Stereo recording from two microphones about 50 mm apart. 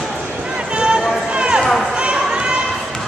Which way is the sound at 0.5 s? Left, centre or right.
Centre.